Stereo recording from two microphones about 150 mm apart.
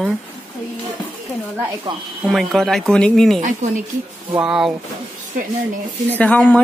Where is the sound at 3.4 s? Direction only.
55° right (ahead or behind).